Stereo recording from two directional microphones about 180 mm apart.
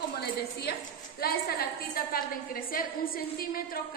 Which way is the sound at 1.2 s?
60° left (ahead or behind).